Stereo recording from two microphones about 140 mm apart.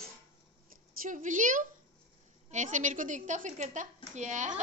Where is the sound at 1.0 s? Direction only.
65° right (ahead or behind).